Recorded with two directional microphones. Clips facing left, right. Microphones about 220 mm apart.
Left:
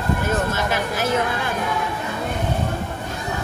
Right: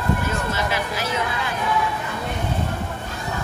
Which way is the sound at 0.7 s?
50° left (ahead or behind).